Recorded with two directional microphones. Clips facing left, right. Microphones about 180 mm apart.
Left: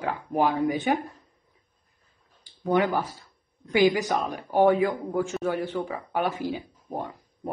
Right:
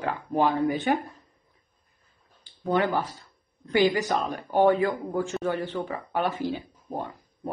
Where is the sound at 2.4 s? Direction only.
10° left (ahead or behind).